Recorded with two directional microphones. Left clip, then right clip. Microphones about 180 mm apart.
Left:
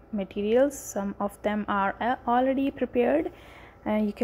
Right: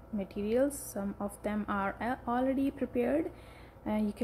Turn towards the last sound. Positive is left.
turn(degrees=20)  # may be behind; listen again after turning